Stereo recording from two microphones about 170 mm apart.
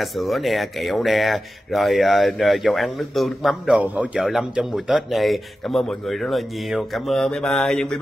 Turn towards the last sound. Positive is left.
turn(degrees=5)  # may be behind; listen again after turning